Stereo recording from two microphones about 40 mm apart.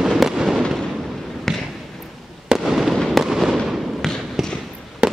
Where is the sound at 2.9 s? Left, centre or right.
Centre.